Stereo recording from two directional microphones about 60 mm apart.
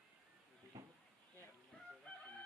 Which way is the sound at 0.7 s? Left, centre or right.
Right.